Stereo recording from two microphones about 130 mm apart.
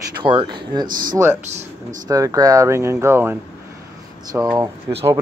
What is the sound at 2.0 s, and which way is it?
Speech, 25° right (ahead or behind).